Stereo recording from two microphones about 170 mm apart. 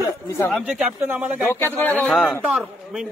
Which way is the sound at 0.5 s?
5° right (ahead or behind).